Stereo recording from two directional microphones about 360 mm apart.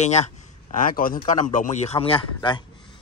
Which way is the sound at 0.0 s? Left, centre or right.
Centre.